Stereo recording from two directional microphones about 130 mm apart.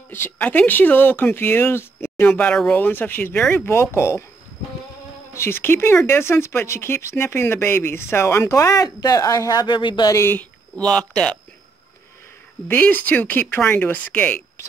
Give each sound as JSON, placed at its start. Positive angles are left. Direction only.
{"t": 0.1, "sound": "speech", "side_deg": 15}
{"t": 5.3, "sound": "speech", "side_deg": 20}
{"t": 10.1, "sound": "speech", "side_deg": 20}
{"t": 10.8, "sound": "speech", "side_deg": 5}
{"t": 12.6, "sound": "speech", "side_deg": 15}